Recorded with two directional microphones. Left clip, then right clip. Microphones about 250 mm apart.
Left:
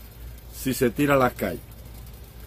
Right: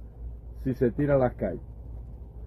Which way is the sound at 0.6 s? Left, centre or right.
Centre.